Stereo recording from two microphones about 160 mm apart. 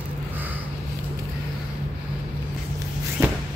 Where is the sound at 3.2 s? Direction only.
15° right (ahead or behind).